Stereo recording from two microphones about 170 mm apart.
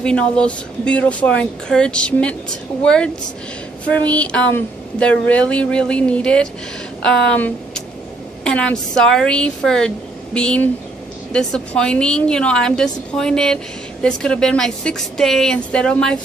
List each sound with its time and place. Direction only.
0.0 s a woman's voice: 5° left (ahead or behind)